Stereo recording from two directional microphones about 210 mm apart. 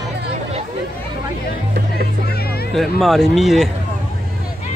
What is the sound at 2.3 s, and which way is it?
Music, 50° left (ahead or behind).